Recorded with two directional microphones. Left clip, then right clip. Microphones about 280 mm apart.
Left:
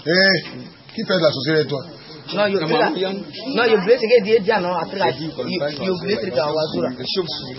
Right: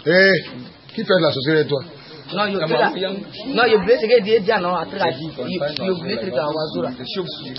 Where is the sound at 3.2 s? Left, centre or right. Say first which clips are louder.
Right 5 dB; centre.